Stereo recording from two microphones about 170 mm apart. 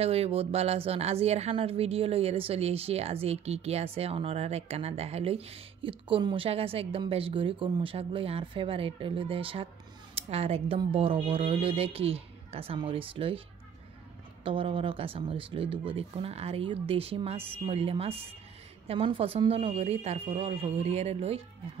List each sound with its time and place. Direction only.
0.0 s speech: 35° right (ahead or behind)
14.4 s speech: 30° right (ahead or behind)